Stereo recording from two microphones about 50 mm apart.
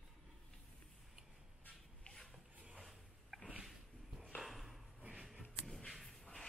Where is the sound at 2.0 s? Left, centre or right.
Centre.